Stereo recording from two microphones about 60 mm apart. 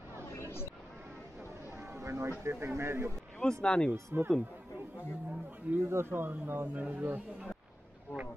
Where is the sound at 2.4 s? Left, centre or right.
Right.